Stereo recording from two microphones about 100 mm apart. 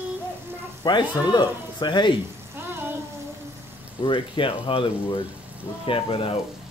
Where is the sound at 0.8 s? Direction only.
45° left (ahead or behind).